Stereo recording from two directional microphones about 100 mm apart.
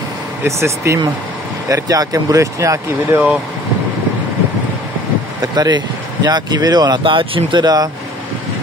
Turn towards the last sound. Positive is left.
turn(degrees=-45)  # may be behind; listen again after turning